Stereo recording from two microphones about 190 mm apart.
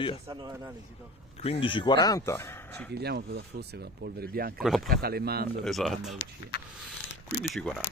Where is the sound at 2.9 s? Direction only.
60° right (ahead or behind).